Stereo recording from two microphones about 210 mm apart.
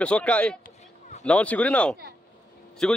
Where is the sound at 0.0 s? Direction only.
5° left (ahead or behind).